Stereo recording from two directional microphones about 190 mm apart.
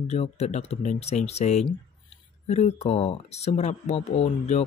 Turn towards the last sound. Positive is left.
turn(degrees=35)  # may be behind; listen again after turning